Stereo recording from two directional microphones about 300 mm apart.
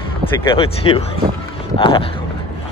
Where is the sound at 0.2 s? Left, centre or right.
Centre.